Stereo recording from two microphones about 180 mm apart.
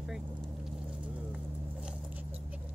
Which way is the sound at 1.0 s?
5° right (ahead or behind).